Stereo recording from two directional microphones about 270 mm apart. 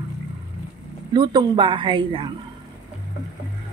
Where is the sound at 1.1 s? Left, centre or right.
Centre.